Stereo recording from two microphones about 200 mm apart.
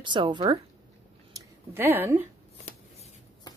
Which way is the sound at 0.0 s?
25° right (ahead or behind).